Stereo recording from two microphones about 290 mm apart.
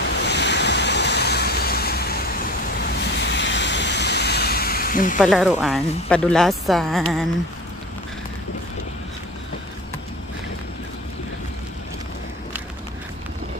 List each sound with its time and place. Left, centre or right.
0.2 s waves: left
2.8 s vehicle: left
5.2 s speech: centre